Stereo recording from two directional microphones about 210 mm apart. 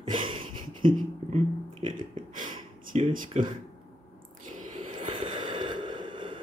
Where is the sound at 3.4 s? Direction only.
35° right (ahead or behind).